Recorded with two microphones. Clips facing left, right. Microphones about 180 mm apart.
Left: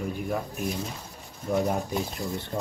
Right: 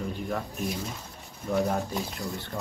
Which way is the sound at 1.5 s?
20° left (ahead or behind).